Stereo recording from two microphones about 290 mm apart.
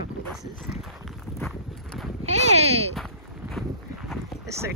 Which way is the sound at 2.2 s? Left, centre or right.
Right.